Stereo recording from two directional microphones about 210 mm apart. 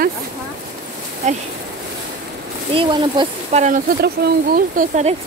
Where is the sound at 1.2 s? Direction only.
35° right (ahead or behind).